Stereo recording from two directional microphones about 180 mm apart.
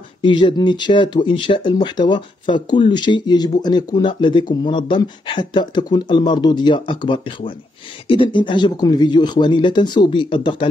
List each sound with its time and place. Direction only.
0.2 s speech: 25° left (ahead or behind)